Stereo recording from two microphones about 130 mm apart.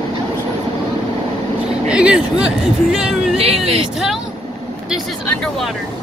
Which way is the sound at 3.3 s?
50° right (ahead or behind).